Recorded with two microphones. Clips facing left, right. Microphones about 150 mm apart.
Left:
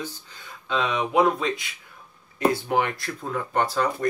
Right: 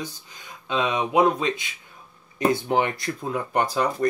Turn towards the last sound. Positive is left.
turn(degrees=-15)  # may be behind; listen again after turning